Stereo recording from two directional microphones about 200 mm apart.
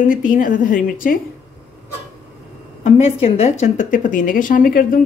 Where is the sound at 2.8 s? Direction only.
35° left (ahead or behind).